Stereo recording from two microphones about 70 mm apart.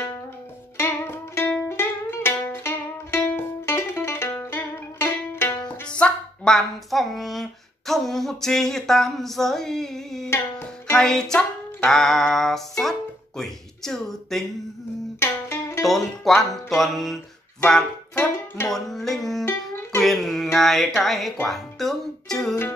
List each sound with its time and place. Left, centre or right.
0.7 s music: left
5.6 s music: centre
13.4 s speech: centre
15.1 s music: left
15.8 s music: centre
18.7 s music: centre